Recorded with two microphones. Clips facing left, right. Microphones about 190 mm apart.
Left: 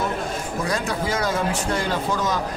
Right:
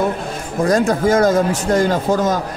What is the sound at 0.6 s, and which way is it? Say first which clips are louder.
A man's voice: right 11 dB; 45° right (ahead or behind).